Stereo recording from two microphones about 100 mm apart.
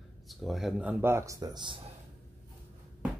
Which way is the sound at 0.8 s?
20° right (ahead or behind).